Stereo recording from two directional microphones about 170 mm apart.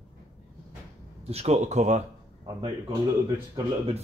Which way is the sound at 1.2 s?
35° right (ahead or behind).